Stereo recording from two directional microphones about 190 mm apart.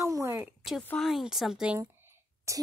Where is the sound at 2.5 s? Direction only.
15° right (ahead or behind).